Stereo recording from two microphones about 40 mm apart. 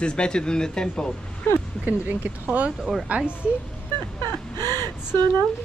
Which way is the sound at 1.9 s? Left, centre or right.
Right.